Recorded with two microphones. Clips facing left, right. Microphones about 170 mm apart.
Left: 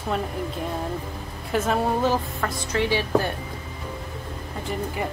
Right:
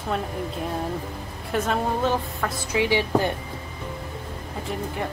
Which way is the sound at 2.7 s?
15° right (ahead or behind).